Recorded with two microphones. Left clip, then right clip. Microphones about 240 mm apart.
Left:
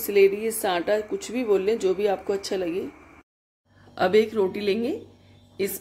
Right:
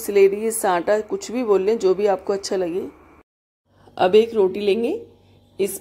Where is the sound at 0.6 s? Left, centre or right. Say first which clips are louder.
Right 5 dB; centre.